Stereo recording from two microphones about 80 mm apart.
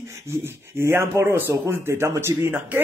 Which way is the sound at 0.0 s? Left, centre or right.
Right.